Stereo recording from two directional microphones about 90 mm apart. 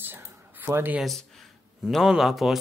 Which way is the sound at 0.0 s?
25° right (ahead or behind).